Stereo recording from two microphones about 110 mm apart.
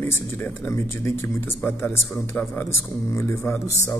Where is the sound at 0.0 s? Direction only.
20° left (ahead or behind).